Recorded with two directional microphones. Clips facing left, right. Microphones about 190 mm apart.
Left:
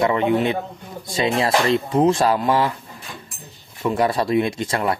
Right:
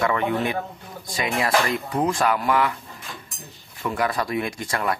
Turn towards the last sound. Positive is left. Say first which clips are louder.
# left 4 dB
turn(degrees=25)  # may be behind; listen again after turning